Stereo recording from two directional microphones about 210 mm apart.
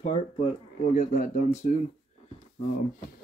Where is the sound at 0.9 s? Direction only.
35° left (ahead or behind).